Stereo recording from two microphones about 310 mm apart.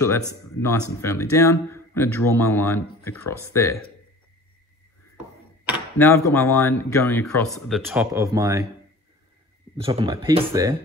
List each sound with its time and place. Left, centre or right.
0.3 s speech: centre
5.9 s speech: centre
9.8 s speech: centre